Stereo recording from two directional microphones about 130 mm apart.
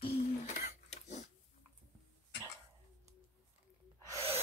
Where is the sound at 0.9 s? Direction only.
65° left (ahead or behind).